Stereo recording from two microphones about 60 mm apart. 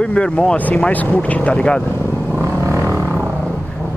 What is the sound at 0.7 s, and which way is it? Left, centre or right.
Speech, left.